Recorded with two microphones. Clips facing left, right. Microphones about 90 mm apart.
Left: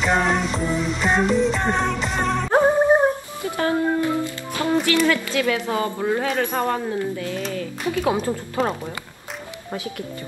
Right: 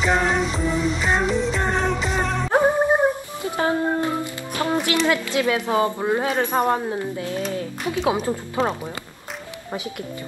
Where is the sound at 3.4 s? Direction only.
20° right (ahead or behind).